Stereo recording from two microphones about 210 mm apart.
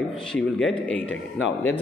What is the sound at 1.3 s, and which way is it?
Speech, 65° left (ahead or behind).